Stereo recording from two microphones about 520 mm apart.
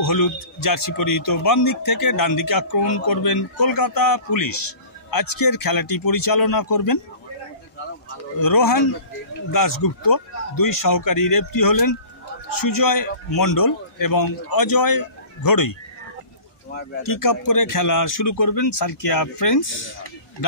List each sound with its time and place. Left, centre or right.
0.0 s a man's voice: left
8.4 s a man's voice: left
17.0 s a man's voice: left